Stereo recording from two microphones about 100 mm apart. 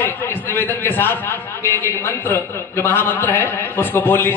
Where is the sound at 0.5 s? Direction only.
20° left (ahead or behind).